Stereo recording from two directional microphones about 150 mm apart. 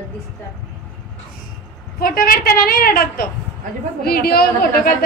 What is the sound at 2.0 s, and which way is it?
A woman's voice, 75° left (ahead or behind).